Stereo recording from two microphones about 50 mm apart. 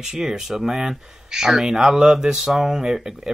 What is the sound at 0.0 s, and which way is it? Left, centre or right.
Speech, centre.